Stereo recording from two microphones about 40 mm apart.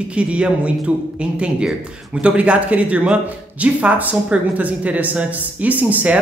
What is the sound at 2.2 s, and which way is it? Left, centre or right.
Speech, right.